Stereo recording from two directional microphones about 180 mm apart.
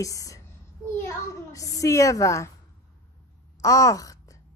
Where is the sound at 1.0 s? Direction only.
20° left (ahead or behind).